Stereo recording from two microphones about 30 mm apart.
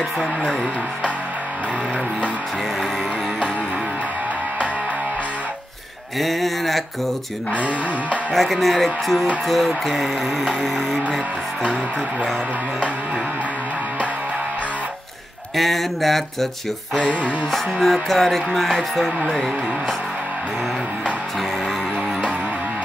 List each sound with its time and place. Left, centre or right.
6.1 s a sound: centre
7.5 s speech: right
8.3 s music: centre
15.5 s music: centre
17.5 s music: centre
19.3 s speech: centre